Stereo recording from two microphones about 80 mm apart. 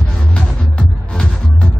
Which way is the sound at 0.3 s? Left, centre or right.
Centre.